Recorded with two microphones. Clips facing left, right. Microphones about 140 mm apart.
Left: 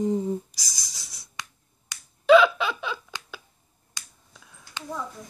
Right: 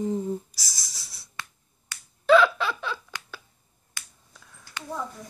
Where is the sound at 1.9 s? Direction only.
15° left (ahead or behind).